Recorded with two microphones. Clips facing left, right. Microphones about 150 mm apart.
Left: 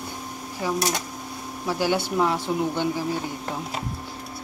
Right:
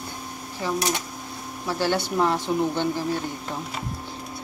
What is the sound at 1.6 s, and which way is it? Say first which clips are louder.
Speech: left 1 dB; 10° left (ahead or behind).